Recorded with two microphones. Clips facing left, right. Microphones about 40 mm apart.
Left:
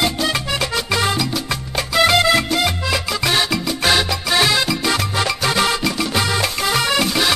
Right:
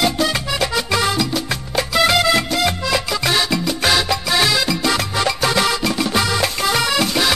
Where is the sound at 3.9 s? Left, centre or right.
Centre.